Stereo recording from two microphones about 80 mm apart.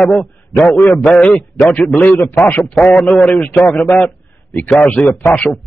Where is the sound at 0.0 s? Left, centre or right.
Centre.